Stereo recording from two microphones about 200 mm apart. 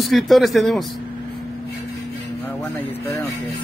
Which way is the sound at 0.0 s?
Centre (ahead or behind).